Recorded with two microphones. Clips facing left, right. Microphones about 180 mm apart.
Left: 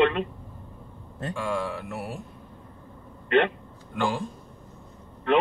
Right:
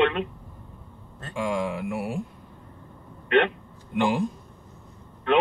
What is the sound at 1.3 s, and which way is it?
Speech, 15° right (ahead or behind).